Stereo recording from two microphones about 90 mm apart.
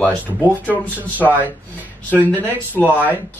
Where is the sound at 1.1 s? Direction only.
20° left (ahead or behind).